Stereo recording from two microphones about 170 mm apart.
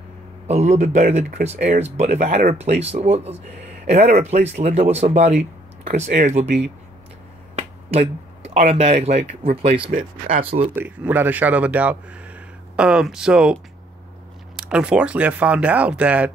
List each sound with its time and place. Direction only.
0.5 s speech: 40° right (ahead or behind)
7.5 s finger snapping: 40° right (ahead or behind)
9.4 s speech: 35° right (ahead or behind)
9.8 s speech: 55° right (ahead or behind)
10.4 s speech: 35° right (ahead or behind)
10.7 s speech: 10° right (ahead or behind)
14.6 s speech: 5° right (ahead or behind)